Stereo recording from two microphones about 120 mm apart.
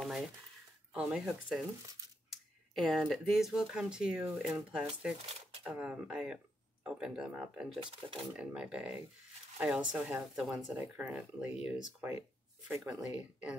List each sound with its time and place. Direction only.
0.0 s a sound: 5° right (ahead or behind)
0.9 s speech: 5° right (ahead or behind)
8.0 s speech: 20° right (ahead or behind)
8.4 s speech: 10° right (ahead or behind)
13.1 s speech: 10° right (ahead or behind)